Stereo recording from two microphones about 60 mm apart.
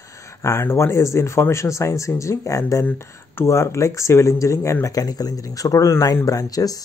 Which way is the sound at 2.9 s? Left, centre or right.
Left.